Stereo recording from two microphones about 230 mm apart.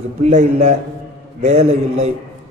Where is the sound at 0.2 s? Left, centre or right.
Right.